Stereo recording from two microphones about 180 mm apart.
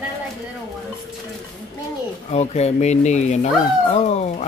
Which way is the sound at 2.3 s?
35° left (ahead or behind).